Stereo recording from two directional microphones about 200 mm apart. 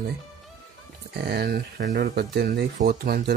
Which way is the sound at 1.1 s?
55° right (ahead or behind).